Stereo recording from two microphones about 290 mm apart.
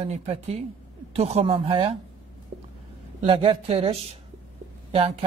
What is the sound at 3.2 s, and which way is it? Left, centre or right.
Speech, centre.